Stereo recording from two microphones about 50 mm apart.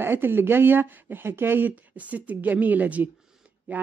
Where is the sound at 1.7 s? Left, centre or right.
Right.